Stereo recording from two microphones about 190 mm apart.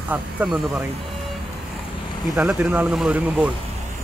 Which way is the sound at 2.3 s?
10° right (ahead or behind).